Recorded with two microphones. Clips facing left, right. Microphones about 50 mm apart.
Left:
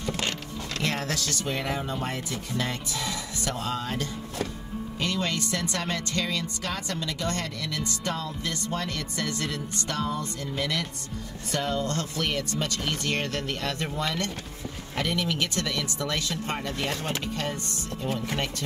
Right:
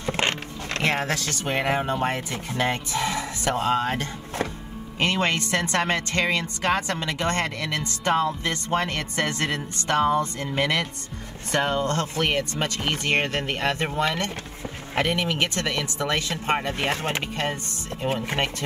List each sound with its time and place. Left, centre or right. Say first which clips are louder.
0.0 s speech: right 5 dB; right